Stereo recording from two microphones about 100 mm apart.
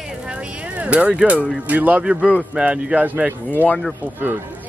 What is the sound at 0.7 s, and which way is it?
Speech, 15° right (ahead or behind).